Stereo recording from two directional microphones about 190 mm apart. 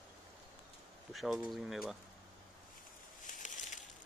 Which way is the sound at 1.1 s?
Centre (ahead or behind).